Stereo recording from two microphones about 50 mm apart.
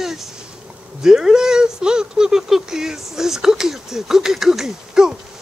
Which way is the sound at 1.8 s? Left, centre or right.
Centre.